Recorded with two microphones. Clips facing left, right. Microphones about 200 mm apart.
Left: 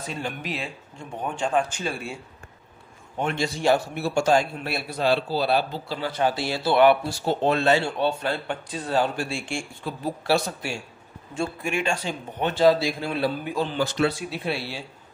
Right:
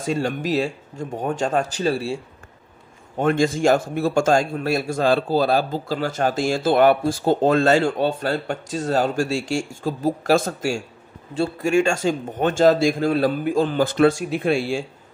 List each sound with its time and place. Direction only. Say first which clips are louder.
0.0 s speech: right 9 dB; 45° right (ahead or behind)
3.2 s a man's voice: right 8 dB; 50° right (ahead or behind)